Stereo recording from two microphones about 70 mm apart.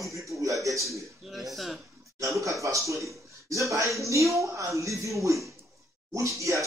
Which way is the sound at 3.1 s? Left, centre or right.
Right.